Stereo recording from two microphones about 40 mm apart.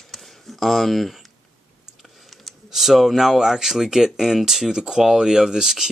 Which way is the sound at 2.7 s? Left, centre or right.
Centre.